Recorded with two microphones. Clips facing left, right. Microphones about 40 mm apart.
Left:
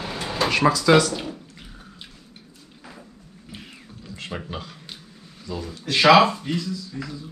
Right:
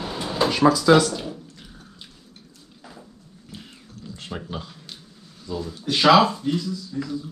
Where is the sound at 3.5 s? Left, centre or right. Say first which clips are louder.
Even; centre.